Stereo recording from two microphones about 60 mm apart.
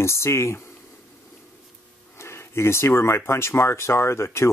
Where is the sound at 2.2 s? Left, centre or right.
Left.